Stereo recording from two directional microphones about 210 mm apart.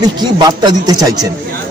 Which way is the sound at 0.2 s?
20° right (ahead or behind).